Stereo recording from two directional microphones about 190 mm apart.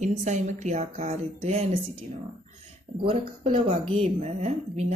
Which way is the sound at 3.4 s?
30° right (ahead or behind).